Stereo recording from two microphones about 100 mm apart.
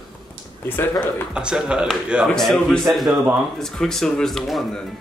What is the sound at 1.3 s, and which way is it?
Speech, 10° right (ahead or behind).